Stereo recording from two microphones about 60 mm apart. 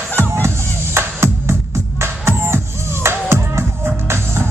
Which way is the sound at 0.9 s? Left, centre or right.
Right.